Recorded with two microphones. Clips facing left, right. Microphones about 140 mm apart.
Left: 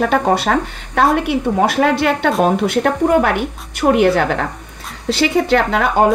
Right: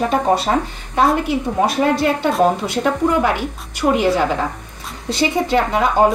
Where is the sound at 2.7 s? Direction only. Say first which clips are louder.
Left 3 dB; 60° left (ahead or behind).